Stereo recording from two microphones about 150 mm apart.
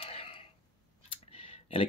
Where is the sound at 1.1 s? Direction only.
40° left (ahead or behind).